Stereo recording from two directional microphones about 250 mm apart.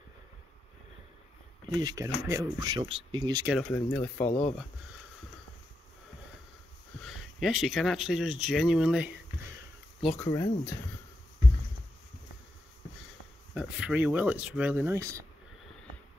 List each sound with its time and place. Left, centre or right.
1.7 s speech: centre
3.5 s speech: centre
4.3 s speech: left
7.0 s speech: centre
10.0 s speech: centre
13.6 s speech: centre